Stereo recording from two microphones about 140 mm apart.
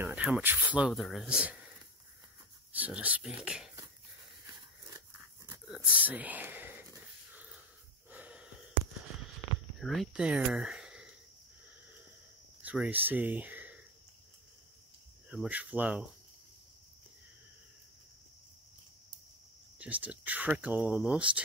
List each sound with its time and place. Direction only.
0.0 s speech: 10° right (ahead or behind)
2.7 s speech: 10° right (ahead or behind)
5.7 s a sound: 10° right (ahead or behind)
8.1 s wheeze: 10° right (ahead or behind)
9.8 s speech: centre (ahead or behind)
12.6 s speech: 10° right (ahead or behind)
15.2 s speech: 10° right (ahead or behind)
19.8 s speech: 10° right (ahead or behind)